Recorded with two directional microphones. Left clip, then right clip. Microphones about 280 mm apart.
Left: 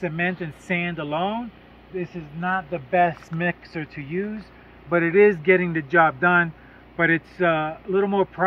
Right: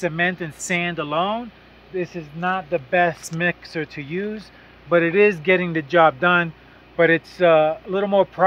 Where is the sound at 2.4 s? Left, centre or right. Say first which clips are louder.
Right 3 dB; centre.